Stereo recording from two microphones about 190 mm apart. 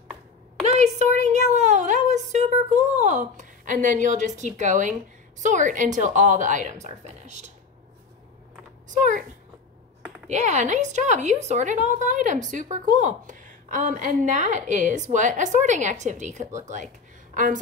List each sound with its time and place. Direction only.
0.7 s a sound: 35° right (ahead or behind)
5.4 s a woman's voice: 40° right (ahead or behind)
8.8 s speech: 40° right (ahead or behind)
10.2 s a woman's voice: 40° right (ahead or behind)